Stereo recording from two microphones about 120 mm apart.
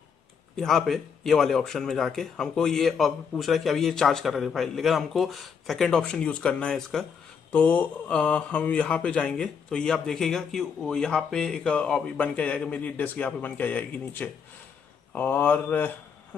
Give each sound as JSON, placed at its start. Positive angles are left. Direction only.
{"t": 0.6, "sound": "speech", "side_deg": 5}
{"t": 7.5, "sound": "mantra", "side_deg": 10}